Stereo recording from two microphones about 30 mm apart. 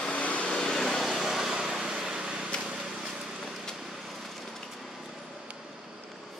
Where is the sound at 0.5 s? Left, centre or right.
Centre.